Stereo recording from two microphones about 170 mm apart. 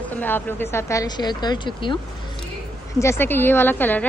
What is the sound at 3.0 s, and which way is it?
Speech, 15° left (ahead or behind).